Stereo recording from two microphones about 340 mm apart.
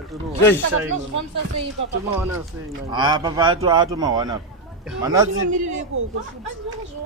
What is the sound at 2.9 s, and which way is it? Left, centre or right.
A man's voice, centre.